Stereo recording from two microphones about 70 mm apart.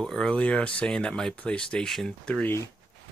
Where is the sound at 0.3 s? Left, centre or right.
Centre.